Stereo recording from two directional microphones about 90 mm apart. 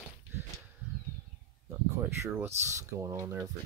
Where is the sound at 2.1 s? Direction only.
30° right (ahead or behind).